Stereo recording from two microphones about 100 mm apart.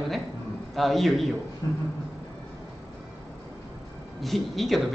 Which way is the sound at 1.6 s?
40° left (ahead or behind).